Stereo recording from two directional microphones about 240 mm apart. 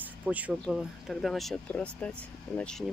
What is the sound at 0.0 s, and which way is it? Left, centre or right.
Speech, centre.